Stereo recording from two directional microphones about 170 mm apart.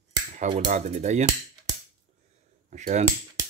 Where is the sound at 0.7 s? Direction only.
45° right (ahead or behind).